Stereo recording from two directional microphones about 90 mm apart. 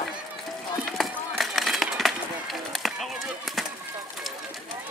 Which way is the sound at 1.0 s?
Centre (ahead or behind).